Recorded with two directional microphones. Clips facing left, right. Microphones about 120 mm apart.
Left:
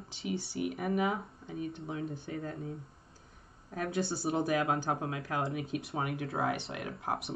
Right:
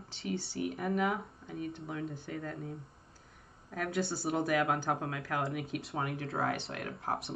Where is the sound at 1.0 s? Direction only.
25° left (ahead or behind).